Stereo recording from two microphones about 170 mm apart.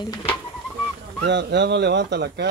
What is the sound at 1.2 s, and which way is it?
Speech, 90° right.